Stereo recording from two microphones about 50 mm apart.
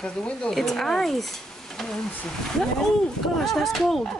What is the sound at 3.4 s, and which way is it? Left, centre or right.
Speech, centre.